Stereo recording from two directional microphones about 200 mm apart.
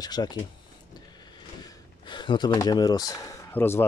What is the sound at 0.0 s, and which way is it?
Speech, 20° left (ahead or behind).